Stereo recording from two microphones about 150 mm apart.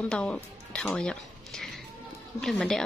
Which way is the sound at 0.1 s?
5° left (ahead or behind).